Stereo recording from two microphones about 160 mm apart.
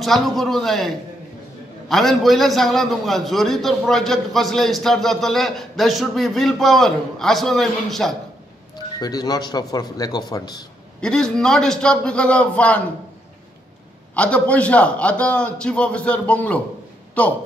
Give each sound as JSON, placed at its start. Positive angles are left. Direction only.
{"t": 0.0, "sound": "a man's voice", "side_deg": 0}
{"t": 8.7, "sound": "a man's voice", "side_deg": 25}
{"t": 11.0, "sound": "a man's voice", "side_deg": 5}
{"t": 14.1, "sound": "a man's voice", "side_deg": 10}